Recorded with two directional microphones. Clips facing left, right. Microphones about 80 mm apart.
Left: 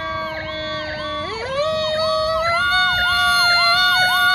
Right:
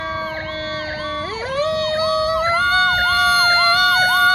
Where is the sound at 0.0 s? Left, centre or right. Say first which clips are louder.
Even; centre.